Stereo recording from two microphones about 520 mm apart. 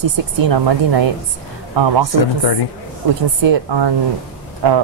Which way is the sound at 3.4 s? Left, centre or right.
Right.